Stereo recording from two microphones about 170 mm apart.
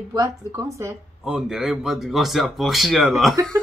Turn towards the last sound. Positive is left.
turn(degrees=0)  # may be behind; listen again after turning